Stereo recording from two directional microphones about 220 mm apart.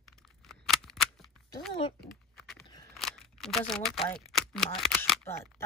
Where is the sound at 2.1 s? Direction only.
Centre (ahead or behind).